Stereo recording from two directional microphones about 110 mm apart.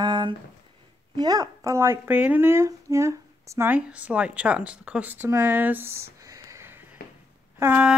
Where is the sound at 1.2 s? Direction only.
35° right (ahead or behind).